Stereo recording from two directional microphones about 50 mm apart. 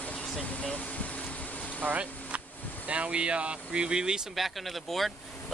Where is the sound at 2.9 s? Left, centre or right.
Right.